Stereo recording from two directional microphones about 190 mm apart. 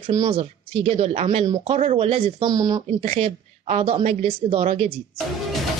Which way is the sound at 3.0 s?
35° right (ahead or behind).